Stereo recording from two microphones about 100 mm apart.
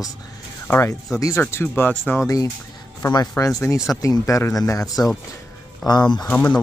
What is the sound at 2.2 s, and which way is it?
A man's voice, 35° left (ahead or behind).